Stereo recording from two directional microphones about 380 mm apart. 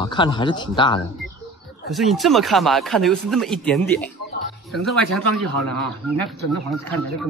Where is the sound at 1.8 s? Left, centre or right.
Centre.